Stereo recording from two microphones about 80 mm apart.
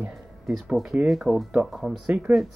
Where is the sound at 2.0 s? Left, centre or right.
Centre.